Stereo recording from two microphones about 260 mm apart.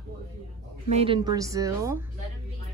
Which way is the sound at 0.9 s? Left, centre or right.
Right.